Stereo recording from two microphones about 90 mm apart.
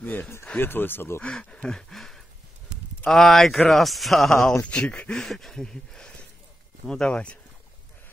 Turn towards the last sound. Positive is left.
turn(degrees=10)  # may be behind; listen again after turning